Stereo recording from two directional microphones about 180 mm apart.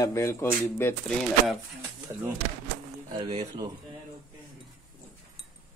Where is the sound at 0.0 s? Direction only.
20° left (ahead or behind).